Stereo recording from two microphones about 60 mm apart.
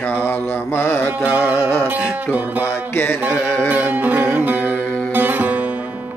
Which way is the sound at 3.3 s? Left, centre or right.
Centre.